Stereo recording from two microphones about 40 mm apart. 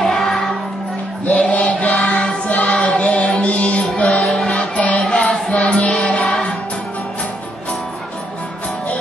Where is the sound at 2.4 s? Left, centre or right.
Left.